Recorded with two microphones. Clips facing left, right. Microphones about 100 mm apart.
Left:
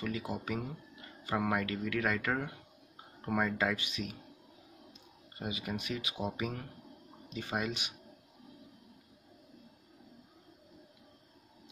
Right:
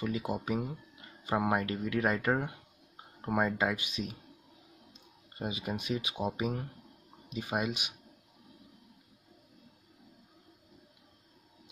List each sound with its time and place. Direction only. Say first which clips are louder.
0.0 s speech: right 3 dB; 20° right (ahead or behind)
5.4 s speech: right 2 dB; 25° right (ahead or behind)